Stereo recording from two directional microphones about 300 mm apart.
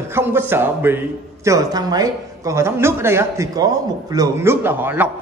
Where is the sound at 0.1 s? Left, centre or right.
Centre.